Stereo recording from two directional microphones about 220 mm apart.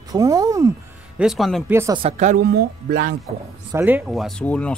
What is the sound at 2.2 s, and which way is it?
Speech, 40° right (ahead or behind).